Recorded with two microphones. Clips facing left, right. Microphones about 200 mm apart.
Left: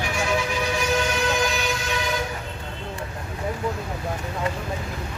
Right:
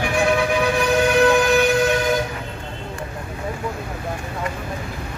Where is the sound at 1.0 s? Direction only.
55° right (ahead or behind).